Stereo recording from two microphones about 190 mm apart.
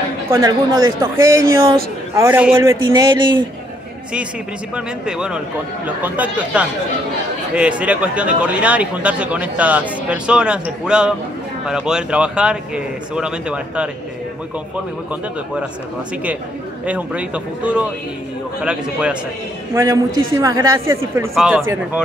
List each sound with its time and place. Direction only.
0.3 s speech: 20° right (ahead or behind)
2.9 s speech: 25° right (ahead or behind)
4.7 s speech: 5° right (ahead or behind)
16.8 s speech: 5° right (ahead or behind)
19.7 s speech: 15° right (ahead or behind)